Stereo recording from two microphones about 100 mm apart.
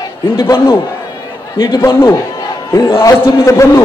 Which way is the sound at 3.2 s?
30° left (ahead or behind).